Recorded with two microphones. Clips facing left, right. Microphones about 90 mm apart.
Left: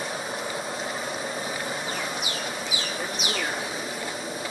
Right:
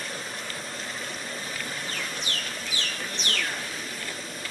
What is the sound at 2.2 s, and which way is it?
Chicken, 10° left (ahead or behind).